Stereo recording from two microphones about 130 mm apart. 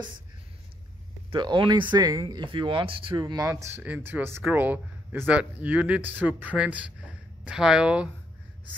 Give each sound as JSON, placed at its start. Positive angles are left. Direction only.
{"t": 1.3, "sound": "speech", "side_deg": -40}
{"t": 3.4, "sound": "speech", "side_deg": -20}